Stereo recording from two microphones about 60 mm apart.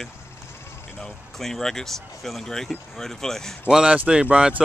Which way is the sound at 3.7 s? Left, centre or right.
Centre.